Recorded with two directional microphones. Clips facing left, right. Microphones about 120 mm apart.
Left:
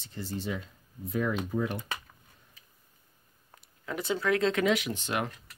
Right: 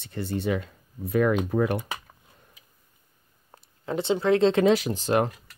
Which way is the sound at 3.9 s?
25° right (ahead or behind).